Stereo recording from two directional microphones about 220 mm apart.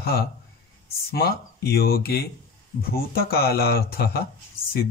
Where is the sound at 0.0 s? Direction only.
45° left (ahead or behind).